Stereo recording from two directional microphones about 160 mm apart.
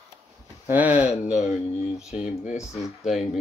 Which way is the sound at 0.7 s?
10° right (ahead or behind).